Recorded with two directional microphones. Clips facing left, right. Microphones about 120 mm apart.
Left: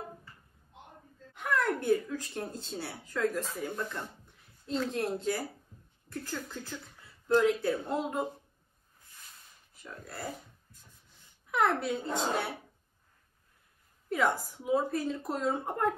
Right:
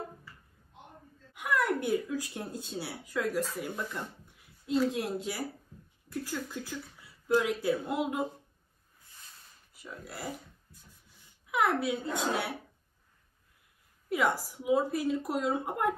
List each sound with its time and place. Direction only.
1.3 s a woman's voice: 10° right (ahead or behind)
10.0 s a woman's voice: 5° right (ahead or behind)
11.5 s a woman's voice: 5° right (ahead or behind)
14.0 s speech: 10° right (ahead or behind)